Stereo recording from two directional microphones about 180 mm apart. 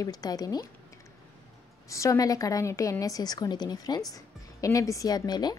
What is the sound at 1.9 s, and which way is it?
A woman's voice, 15° left (ahead or behind).